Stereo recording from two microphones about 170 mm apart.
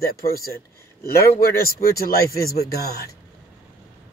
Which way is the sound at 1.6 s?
60° left (ahead or behind).